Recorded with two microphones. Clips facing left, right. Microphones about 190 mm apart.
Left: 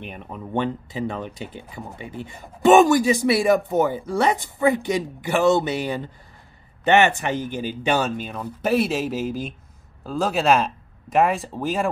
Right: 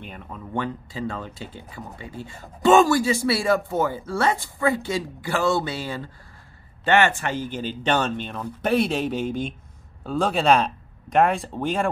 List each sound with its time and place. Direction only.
0.0 s speech: 20° left (ahead or behind); by 11.9 s 5° left (ahead or behind)